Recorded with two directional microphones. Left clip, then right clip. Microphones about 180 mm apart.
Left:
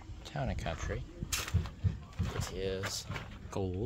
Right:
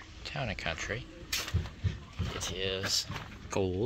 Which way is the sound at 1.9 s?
5° left (ahead or behind).